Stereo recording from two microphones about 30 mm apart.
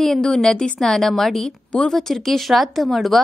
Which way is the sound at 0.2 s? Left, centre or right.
Centre.